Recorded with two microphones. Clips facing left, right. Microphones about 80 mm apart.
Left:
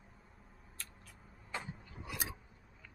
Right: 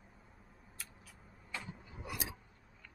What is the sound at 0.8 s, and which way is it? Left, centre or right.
Cat, centre.